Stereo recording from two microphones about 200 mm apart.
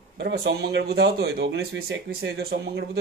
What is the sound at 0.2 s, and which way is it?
Speech, 55° right (ahead or behind).